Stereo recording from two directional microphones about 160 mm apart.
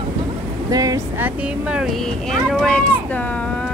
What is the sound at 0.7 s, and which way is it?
Vehicle, 20° right (ahead or behind).